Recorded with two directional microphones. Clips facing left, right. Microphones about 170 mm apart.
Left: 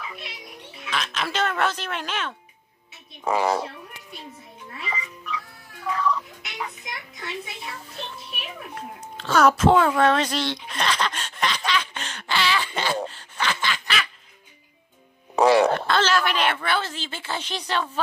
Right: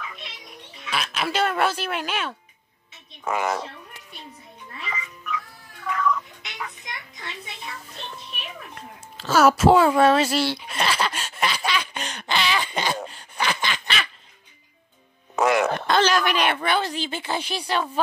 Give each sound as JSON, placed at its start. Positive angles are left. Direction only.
{"t": 0.8, "sound": "a woman's voice", "side_deg": -10}
{"t": 3.3, "sound": "speech", "side_deg": 30}
{"t": 4.1, "sound": "music", "side_deg": 0}
{"t": 4.8, "sound": "croak", "side_deg": 30}
{"t": 5.9, "sound": "music", "side_deg": 35}
{"t": 6.8, "sound": "speech", "side_deg": 5}
{"t": 9.1, "sound": "a sound", "side_deg": -5}
{"t": 15.3, "sound": "music", "side_deg": 35}
{"t": 15.9, "sound": "a woman's voice", "side_deg": -15}